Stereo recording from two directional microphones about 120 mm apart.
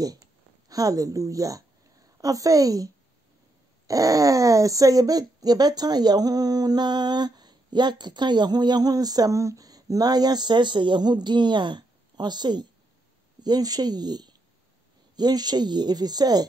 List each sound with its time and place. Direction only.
0.7 s a woman's voice: 30° right (ahead or behind)